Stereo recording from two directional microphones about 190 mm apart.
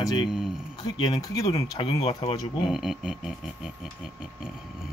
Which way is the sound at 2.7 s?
Centre (ahead or behind).